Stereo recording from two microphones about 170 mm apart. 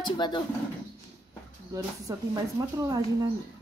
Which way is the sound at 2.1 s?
20° right (ahead or behind).